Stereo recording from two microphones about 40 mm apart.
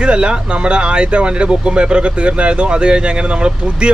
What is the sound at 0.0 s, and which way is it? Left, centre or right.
Speech, right.